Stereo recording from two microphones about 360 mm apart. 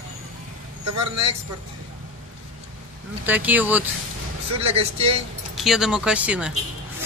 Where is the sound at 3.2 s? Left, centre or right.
Centre.